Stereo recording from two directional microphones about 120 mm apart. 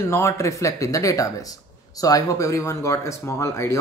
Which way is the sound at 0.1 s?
25° left (ahead or behind).